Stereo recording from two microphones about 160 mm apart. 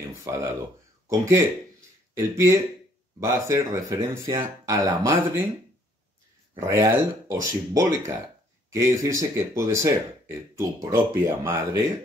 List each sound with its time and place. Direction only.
0.2 s speech: 20° right (ahead or behind)
6.6 s speech: 15° right (ahead or behind)